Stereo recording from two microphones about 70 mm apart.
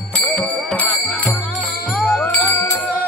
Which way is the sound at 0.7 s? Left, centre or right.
Centre.